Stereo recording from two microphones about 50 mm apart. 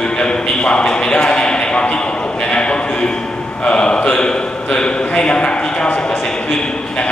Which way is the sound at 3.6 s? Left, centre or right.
Centre.